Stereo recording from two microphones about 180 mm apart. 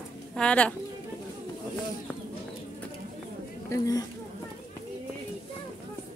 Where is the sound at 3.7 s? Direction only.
20° left (ahead or behind).